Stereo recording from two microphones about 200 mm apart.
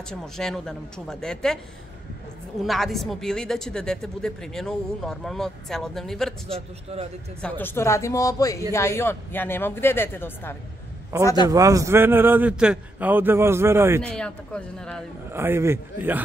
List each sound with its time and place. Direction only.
0.1 s a woman's voice: 5° left (ahead or behind)
2.6 s a woman's voice: centre (ahead or behind)
6.4 s a man's voice: 30° right (ahead or behind)
7.4 s speech: 10° left (ahead or behind)
11.1 s a man's voice: 15° right (ahead or behind)
14.0 s a woman's voice: 5° left (ahead or behind)
15.3 s a man's voice: 10° right (ahead or behind)